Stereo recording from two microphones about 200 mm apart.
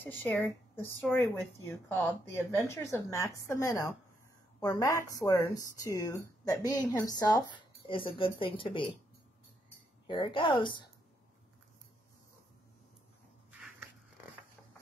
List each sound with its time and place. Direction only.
0.0 s a woman's voice: 10° left (ahead or behind)
2.5 s a woman's voice: 15° left (ahead or behind)
10.0 s speech: 25° left (ahead or behind)
13.5 s a sound: 5° right (ahead or behind)